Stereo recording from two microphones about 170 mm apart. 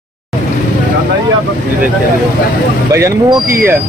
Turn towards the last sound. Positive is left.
turn(degrees=-15)  # may be behind; listen again after turning